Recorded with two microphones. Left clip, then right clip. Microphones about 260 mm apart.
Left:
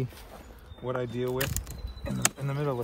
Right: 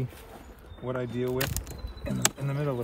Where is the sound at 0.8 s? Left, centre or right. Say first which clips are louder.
Even; centre.